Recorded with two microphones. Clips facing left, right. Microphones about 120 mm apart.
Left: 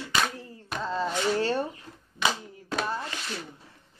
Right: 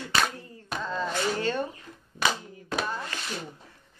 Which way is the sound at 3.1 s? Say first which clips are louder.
Right 1 dB; 20° left (ahead or behind).